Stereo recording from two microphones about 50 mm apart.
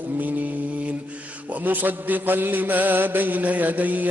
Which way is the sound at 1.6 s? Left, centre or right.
Right.